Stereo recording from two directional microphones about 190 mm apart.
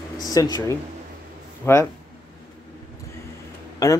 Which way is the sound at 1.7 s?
15° left (ahead or behind).